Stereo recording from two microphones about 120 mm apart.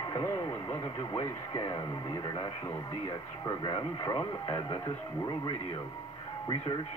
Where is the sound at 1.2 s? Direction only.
30° left (ahead or behind).